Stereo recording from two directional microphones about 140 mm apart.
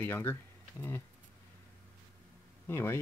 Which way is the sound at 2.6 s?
15° left (ahead or behind).